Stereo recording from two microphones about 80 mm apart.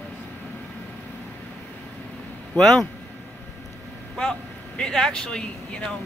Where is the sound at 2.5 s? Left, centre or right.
Centre.